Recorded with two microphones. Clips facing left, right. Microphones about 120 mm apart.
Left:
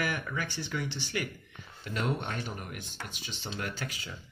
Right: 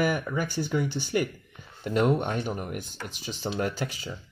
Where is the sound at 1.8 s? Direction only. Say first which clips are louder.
Right 9 dB; 50° right (ahead or behind).